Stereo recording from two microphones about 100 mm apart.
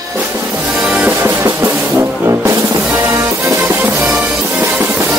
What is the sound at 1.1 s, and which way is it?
Music, 30° right (ahead or behind).